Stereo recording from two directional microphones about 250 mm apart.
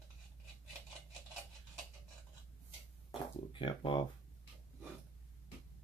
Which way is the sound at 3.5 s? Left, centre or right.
Left.